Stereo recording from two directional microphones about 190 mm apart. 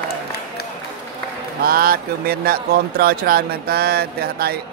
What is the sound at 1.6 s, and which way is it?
Speech, 50° right (ahead or behind).